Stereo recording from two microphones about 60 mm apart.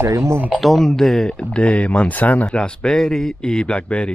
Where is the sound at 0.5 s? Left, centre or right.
Centre.